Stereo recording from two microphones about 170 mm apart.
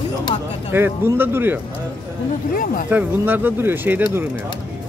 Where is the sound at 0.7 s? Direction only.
15° right (ahead or behind).